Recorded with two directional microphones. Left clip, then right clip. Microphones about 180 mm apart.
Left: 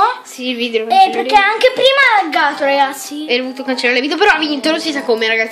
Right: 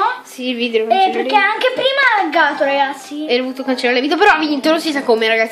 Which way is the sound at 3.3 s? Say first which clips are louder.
Even; 10° right (ahead or behind).